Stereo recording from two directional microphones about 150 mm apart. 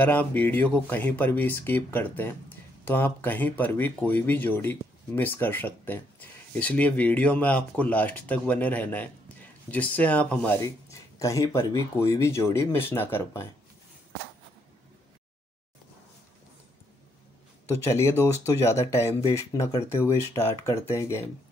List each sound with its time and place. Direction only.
0.0 s speech: 10° left (ahead or behind)
17.6 s speech: 20° left (ahead or behind)